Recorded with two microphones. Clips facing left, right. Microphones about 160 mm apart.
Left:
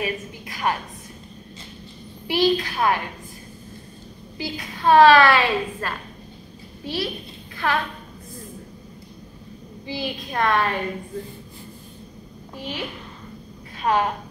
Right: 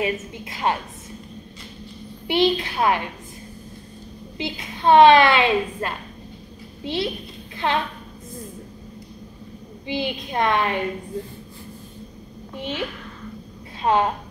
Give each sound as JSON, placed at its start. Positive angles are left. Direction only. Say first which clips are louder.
{"t": 0.0, "sound": "a woman's voice", "louder": "right 3 dB", "side_deg": -25}
{"t": 2.2, "sound": "a woman's voice", "louder": "even", "side_deg": -25}
{"t": 4.4, "sound": "a woman's voice", "louder": "right 1 dB", "side_deg": -25}
{"t": 9.8, "sound": "a woman's voice", "louder": "right 3 dB", "side_deg": -20}
{"t": 12.5, "sound": "a woman's voice", "louder": "right 3 dB", "side_deg": -25}
{"t": 13.9, "sound": "a woman's voice", "louder": "right 2 dB", "side_deg": -25}